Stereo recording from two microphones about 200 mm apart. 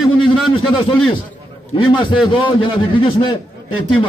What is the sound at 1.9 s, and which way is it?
A man's voice, 25° left (ahead or behind).